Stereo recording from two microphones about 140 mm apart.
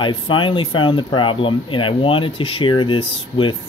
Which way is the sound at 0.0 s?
35° left (ahead or behind).